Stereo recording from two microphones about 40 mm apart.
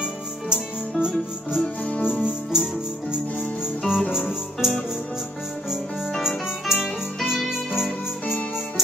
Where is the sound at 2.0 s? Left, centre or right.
Right.